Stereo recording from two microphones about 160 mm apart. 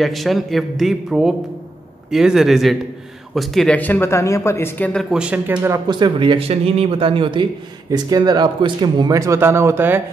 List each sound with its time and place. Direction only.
0.0 s speech: centre (ahead or behind)
5.1 s speech: 5° right (ahead or behind)
5.9 s speech: 30° right (ahead or behind)